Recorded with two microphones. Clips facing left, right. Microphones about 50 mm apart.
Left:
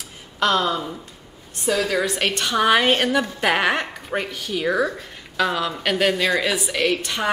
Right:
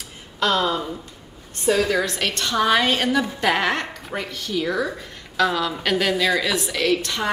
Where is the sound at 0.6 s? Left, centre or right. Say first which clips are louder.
Even; centre.